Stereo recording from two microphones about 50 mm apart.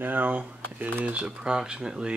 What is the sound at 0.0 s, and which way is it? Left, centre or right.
Speech, right.